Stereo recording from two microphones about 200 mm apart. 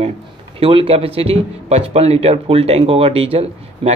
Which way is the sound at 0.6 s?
30° right (ahead or behind).